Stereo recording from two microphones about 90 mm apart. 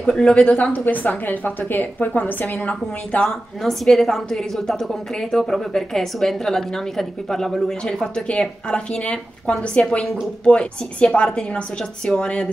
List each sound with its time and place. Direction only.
0.1 s a woman's voice: 10° left (ahead or behind)
3.1 s a woman's voice: 10° left (ahead or behind)